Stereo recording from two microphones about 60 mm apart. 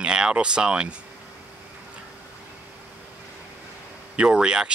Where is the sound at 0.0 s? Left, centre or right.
Centre.